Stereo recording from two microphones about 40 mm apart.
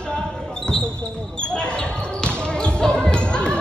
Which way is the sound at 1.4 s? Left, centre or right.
Left.